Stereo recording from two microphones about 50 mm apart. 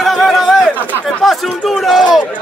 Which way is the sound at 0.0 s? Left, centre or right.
Centre.